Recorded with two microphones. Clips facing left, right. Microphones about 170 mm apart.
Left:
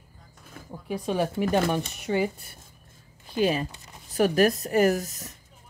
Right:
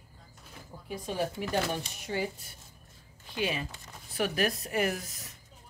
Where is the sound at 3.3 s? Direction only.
40° left (ahead or behind).